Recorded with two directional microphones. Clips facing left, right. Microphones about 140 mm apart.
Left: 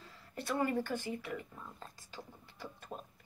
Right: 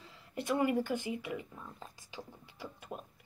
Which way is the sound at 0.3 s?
15° right (ahead or behind).